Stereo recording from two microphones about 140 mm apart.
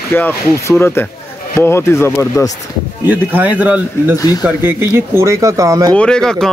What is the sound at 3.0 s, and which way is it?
Speech, 10° right (ahead or behind).